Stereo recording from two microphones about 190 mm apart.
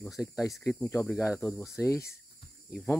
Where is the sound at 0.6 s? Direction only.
15° left (ahead or behind).